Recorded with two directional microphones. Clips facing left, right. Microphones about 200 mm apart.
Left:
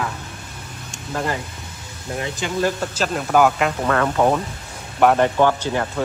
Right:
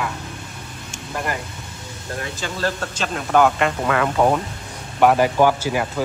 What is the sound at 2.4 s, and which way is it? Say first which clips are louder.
Speech: left 4 dB; 15° left (ahead or behind).